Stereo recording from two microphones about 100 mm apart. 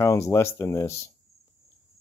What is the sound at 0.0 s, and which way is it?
Speech, 30° left (ahead or behind).